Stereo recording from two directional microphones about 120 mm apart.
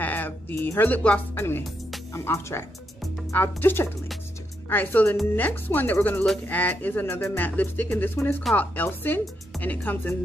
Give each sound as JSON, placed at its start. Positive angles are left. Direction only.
{"t": 0.0, "sound": "speech", "side_deg": 15}